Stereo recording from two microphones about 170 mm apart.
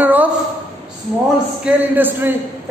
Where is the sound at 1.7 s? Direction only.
10° right (ahead or behind).